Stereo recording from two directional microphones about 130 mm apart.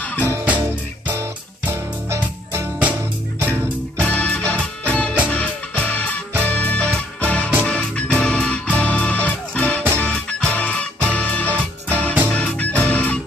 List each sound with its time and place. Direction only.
0.2 s music: 15° right (ahead or behind)
1.7 s music: 15° right (ahead or behind)
4.0 s music: 10° left (ahead or behind)